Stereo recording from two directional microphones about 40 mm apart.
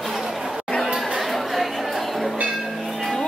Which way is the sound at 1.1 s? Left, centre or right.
Centre.